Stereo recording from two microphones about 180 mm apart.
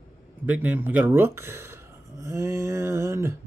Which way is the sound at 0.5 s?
10° right (ahead or behind).